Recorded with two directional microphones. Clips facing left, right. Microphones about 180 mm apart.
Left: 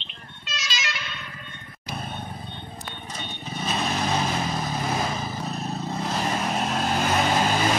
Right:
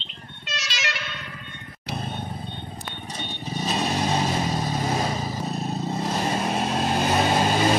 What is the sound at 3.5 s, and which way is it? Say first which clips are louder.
Vehicle: right 2 dB; 25° right (ahead or behind).